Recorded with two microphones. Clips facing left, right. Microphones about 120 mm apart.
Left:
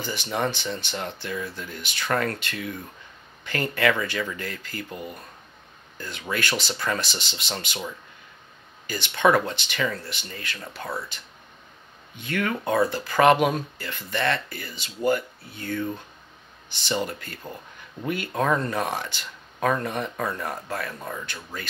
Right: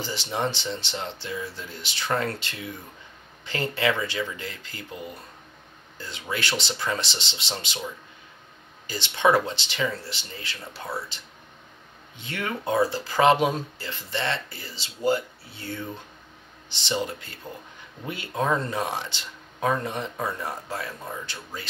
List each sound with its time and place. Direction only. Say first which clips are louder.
0.0 s speech: left 1 dB; 25° right (ahead or behind)
5.9 s speech: left 2 dB; 25° right (ahead or behind)
8.8 s speech: left 1 dB; 25° right (ahead or behind)
12.2 s speech: left 4 dB; 25° right (ahead or behind)
17.4 s speech: even; 10° left (ahead or behind)
18.0 s speech: left 2 dB; 25° right (ahead or behind)